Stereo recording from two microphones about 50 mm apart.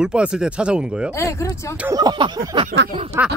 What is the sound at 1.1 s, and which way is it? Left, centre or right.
Speech, left.